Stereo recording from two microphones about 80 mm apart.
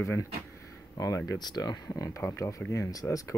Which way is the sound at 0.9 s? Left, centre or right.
Left.